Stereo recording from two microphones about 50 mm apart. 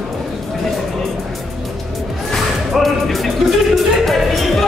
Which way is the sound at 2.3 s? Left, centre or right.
Centre.